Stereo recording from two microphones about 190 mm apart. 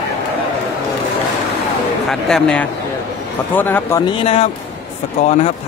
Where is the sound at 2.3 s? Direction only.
5° left (ahead or behind).